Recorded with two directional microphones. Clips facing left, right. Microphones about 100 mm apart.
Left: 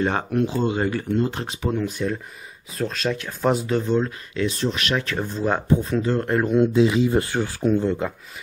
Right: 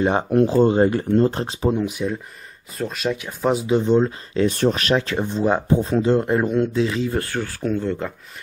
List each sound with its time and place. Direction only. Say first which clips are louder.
0.0 s speech: right 3 dB; 20° right (ahead or behind)
0.3 s speech: right 6 dB; 35° right (ahead or behind)
1.8 s speech: right 1 dB; 10° right (ahead or behind)
3.8 s speech: right 5 dB; 30° right (ahead or behind)
4.5 s speech: right 6 dB; 50° right (ahead or behind); by 6.1 s 30° right (ahead or behind)
6.1 s speech: right 1 dB; 10° right (ahead or behind)
6.6 s speech: left 3 dB; 15° left (ahead or behind)